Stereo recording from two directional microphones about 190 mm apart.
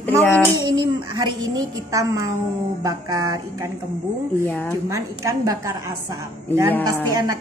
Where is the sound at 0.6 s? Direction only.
20° right (ahead or behind).